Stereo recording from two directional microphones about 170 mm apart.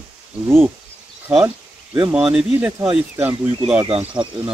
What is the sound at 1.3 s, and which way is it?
Speech, 10° right (ahead or behind).